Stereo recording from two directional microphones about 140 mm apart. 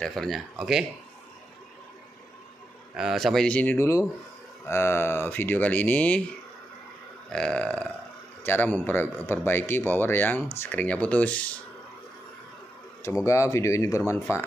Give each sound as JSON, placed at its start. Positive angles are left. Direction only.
{"t": 0.0, "sound": "speech", "side_deg": 5}
{"t": 3.0, "sound": "speech", "side_deg": 0}
{"t": 7.2, "sound": "speech", "side_deg": 5}
{"t": 13.0, "sound": "speech", "side_deg": 20}